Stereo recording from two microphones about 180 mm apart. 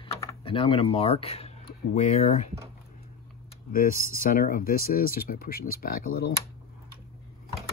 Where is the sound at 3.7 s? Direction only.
50° left (ahead or behind).